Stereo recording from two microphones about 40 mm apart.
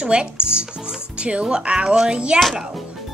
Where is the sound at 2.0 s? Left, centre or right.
Right.